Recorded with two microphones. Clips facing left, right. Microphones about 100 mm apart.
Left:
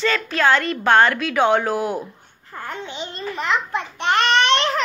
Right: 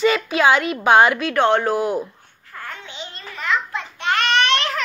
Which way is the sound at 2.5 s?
20° left (ahead or behind).